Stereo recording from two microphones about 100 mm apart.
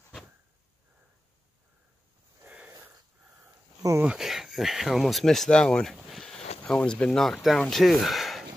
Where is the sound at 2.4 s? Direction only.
20° right (ahead or behind).